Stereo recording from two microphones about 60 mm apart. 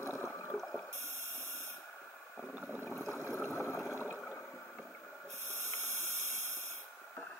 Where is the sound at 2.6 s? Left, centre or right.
Right.